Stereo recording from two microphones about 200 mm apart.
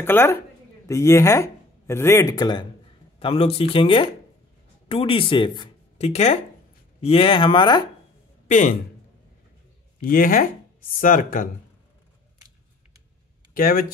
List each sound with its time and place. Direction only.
0.0 s speech: 10° left (ahead or behind)
8.5 s speech: 40° left (ahead or behind)
10.0 s speech: 45° left (ahead or behind)
13.6 s speech: 45° left (ahead or behind)